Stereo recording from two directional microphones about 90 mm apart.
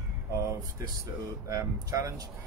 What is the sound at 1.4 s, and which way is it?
Speech, 35° right (ahead or behind).